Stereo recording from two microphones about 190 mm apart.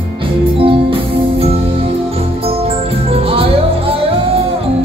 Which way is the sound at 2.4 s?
30° right (ahead or behind).